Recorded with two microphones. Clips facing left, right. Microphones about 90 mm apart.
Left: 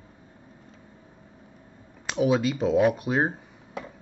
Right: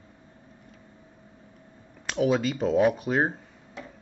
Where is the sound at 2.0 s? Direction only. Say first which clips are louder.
Left 1 dB; 5° left (ahead or behind).